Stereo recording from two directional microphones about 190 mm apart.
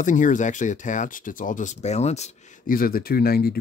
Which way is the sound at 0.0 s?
40° left (ahead or behind).